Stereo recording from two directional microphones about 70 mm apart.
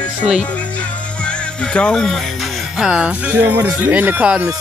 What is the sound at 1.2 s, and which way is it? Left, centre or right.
Music, centre.